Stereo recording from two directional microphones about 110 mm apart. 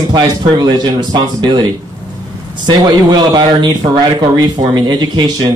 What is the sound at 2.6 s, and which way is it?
Speech, 40° right (ahead or behind).